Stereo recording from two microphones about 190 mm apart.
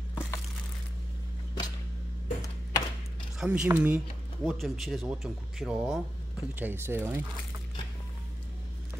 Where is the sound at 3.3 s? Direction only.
5° right (ahead or behind).